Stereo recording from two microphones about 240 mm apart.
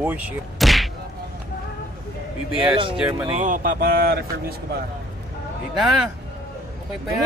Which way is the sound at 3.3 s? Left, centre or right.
Right.